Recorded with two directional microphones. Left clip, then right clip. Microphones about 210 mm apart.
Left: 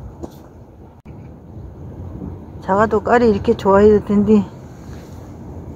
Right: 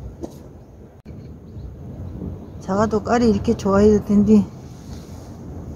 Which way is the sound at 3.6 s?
5° right (ahead or behind).